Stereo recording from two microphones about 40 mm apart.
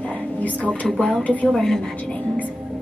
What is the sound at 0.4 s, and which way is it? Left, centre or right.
A woman's voice, left.